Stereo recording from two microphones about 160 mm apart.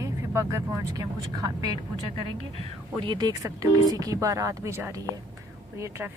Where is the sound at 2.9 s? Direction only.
30° right (ahead or behind).